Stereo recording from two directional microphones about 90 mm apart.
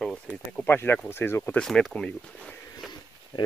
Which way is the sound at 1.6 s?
5° left (ahead or behind).